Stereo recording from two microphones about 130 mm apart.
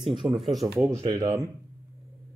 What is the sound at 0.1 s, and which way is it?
Speech, 35° right (ahead or behind).